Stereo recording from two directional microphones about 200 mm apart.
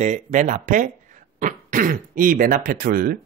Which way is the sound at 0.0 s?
40° right (ahead or behind).